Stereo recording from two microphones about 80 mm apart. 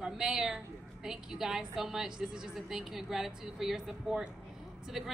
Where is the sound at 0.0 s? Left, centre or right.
Centre.